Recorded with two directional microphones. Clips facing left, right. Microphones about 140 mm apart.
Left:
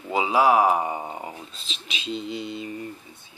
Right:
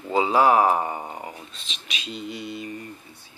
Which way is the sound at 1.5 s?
35° left (ahead or behind).